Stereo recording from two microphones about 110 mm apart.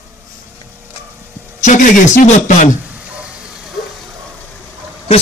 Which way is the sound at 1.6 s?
90° left.